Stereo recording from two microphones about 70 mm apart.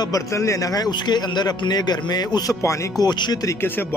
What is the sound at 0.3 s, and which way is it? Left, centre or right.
Speech, left.